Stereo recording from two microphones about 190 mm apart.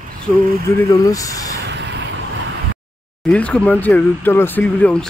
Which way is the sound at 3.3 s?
5° left (ahead or behind).